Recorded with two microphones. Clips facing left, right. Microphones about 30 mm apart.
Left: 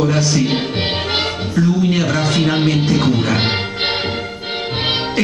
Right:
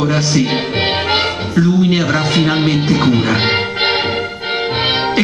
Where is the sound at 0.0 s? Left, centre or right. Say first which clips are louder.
Right 1 dB; centre.